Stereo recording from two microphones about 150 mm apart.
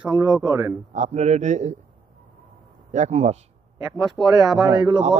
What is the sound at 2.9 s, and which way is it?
Speech, 50° right (ahead or behind).